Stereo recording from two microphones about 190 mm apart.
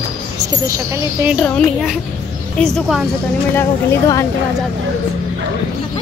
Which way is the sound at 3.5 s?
15° left (ahead or behind).